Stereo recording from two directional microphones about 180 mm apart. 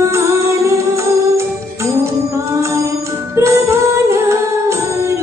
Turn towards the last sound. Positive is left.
turn(degrees=-15)  # may be behind; listen again after turning